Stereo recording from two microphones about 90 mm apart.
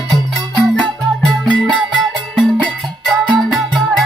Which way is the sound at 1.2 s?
15° left (ahead or behind).